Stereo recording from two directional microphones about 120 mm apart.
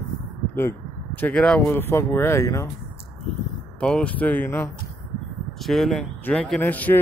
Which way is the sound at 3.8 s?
10° left (ahead or behind).